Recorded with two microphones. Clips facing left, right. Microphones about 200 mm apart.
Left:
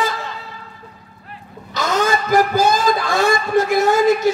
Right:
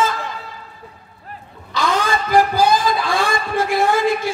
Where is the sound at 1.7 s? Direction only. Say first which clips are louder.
Left 1 dB; 45° left (ahead or behind).